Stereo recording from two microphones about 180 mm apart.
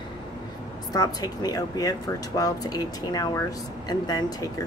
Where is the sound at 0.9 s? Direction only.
20° left (ahead or behind).